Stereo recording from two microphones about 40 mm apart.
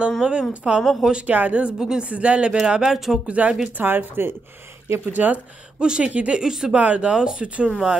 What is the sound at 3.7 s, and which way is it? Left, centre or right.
Speech, right.